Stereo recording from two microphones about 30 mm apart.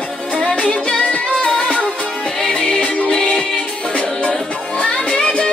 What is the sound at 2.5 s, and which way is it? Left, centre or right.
Music, left.